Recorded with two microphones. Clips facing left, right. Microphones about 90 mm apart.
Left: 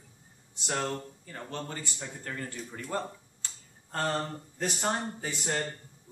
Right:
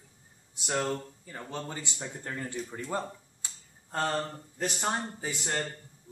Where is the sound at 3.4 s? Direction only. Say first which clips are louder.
Even; 15° right (ahead or behind).